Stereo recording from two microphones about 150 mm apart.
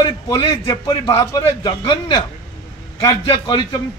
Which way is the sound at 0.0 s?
30° left (ahead or behind).